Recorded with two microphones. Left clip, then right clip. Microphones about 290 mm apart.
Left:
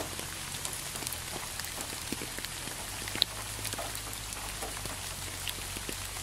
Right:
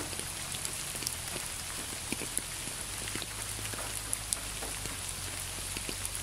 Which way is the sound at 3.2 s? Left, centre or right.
Left.